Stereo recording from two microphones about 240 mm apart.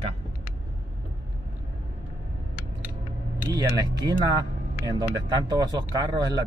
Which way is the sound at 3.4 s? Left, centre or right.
Centre.